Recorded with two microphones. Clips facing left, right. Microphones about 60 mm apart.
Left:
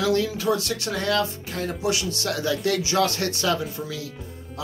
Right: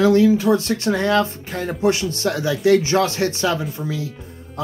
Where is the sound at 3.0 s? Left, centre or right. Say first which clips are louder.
Right 4 dB; right.